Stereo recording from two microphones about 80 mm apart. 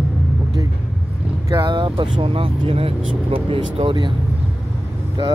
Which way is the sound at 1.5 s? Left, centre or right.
Right.